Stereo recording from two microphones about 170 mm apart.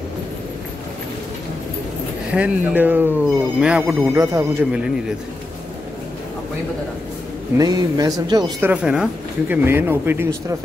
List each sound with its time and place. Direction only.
2.3 s speech: 10° right (ahead or behind)
7.5 s speech: 25° right (ahead or behind)
8.5 s speech: 10° right (ahead or behind)